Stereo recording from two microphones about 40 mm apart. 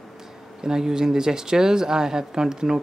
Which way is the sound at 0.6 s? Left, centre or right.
Centre.